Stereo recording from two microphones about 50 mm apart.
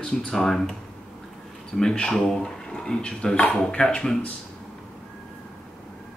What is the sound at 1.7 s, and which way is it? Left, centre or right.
Speech, centre.